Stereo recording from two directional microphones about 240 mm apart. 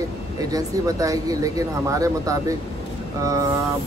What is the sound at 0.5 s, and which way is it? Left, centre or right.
Speech, centre.